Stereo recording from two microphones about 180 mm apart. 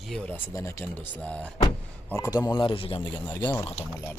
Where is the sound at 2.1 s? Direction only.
15° left (ahead or behind).